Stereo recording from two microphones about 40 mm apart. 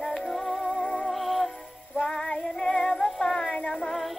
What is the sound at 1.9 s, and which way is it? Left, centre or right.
Child singing, centre.